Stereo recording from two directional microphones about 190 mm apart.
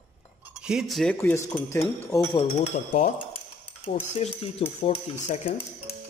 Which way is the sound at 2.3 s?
35° left (ahead or behind).